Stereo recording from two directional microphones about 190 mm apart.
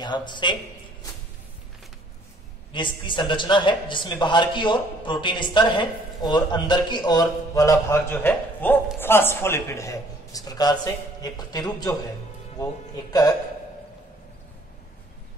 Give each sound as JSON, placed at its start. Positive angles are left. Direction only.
{"t": 0.0, "sound": "speech", "side_deg": 25}
{"t": 2.7, "sound": "a man's voice", "side_deg": 25}